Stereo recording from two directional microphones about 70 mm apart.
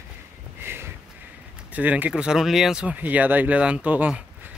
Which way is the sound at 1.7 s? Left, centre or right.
Right.